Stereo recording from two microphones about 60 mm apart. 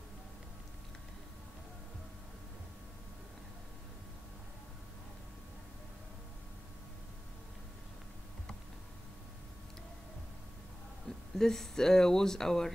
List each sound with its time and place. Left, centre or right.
11.1 s speech: centre